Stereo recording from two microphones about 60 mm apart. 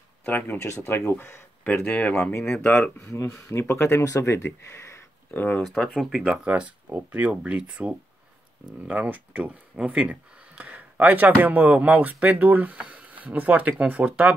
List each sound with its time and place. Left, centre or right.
0.2 s speech: left
0.6 s speech: left
1.9 s speech: left
3.0 s speech: left
3.4 s speech: left
4.0 s speech: left
5.3 s speech: left
5.8 s speech: centre
6.4 s speech: right